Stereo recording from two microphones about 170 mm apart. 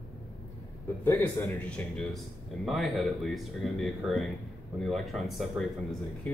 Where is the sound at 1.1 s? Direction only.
15° left (ahead or behind).